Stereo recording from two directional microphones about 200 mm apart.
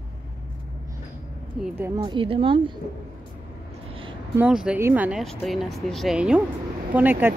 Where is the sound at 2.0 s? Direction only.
25° right (ahead or behind).